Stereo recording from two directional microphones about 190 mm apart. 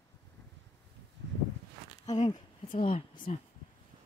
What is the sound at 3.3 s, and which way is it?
Speech, 40° left (ahead or behind).